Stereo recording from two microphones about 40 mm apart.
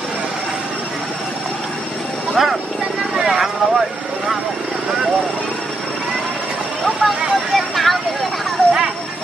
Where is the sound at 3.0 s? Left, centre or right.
Centre.